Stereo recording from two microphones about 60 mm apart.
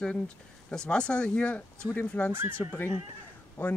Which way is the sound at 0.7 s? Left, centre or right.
Centre.